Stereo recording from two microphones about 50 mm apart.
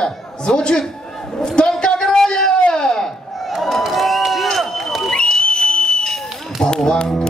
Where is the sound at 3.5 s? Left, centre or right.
Centre.